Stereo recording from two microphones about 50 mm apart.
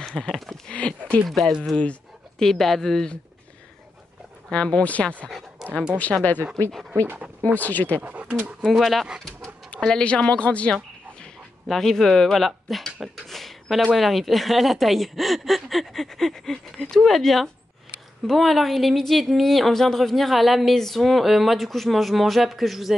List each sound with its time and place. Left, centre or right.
0.0 s speech: centre
0.7 s speech: left
2.3 s speech: centre
4.5 s speech: left
5.6 s a sound: centre
5.9 s speech: left
7.5 s speech: left
8.0 s speech: right
8.6 s speech: centre
9.8 s speech: centre
11.7 s speech: centre